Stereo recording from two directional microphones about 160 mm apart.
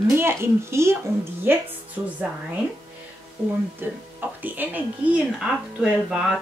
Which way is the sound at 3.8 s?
10° right (ahead or behind).